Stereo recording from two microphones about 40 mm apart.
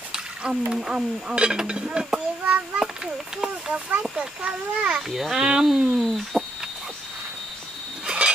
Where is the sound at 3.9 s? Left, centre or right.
Right.